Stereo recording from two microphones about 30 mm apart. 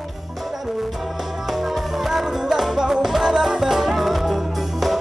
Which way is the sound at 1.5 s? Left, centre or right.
Centre.